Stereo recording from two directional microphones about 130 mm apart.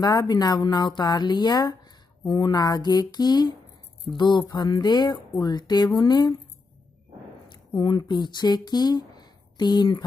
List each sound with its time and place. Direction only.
0.0 s speech: 30° left (ahead or behind)
7.5 s speech: 35° left (ahead or behind)